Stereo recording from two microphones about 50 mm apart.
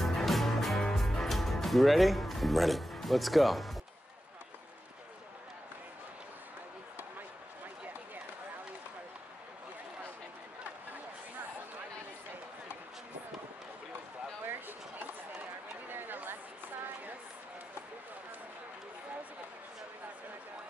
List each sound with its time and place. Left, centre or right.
0.0 s music: centre
14.4 s a sound: right
15.9 s chatter: right